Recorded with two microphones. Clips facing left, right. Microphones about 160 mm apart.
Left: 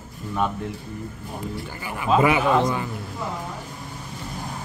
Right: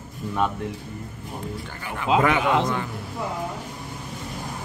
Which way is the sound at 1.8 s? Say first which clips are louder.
Left 1 dB; 5° left (ahead or behind).